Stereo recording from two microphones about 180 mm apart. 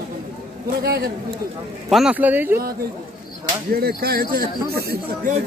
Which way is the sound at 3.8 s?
55° right (ahead or behind).